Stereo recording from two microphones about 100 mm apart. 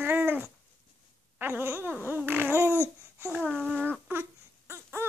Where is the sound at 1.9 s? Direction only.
20° right (ahead or behind).